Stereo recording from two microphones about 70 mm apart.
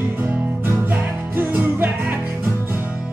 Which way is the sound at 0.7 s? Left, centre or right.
Right.